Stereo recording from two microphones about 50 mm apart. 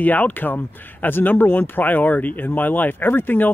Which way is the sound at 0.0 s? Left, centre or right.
Left.